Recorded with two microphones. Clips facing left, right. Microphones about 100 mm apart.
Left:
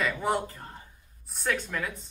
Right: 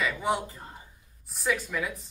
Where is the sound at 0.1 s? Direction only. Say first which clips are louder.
Even; centre (ahead or behind).